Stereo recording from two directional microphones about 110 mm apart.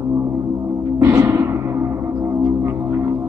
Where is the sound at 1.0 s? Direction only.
20° right (ahead or behind).